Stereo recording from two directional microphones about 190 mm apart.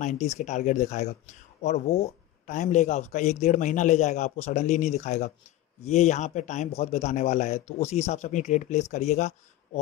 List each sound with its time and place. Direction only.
0.0 s a man's voice: 40° left (ahead or behind)